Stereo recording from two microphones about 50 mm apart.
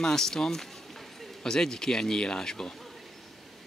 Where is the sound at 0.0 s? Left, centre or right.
Centre.